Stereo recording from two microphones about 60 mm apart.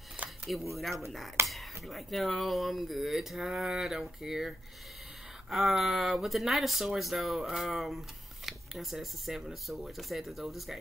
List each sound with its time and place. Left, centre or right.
0.7 s speech: centre